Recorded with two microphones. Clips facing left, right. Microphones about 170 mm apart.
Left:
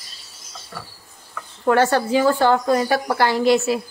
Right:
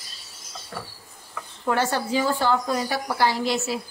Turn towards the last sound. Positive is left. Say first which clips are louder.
# left 8 dB
turn(degrees=60)  # may be behind; listen again after turning